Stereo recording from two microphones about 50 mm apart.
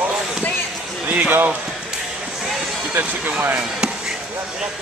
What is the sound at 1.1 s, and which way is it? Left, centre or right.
Speech, right.